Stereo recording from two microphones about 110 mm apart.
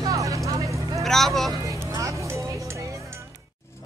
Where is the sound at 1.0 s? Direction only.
Centre (ahead or behind).